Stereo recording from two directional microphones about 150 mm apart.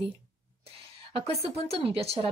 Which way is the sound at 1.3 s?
40° right (ahead or behind).